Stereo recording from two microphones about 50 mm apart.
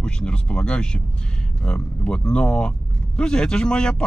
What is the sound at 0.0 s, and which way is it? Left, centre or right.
Speech, left.